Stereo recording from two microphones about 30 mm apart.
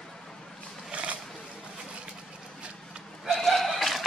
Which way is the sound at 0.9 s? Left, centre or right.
Right.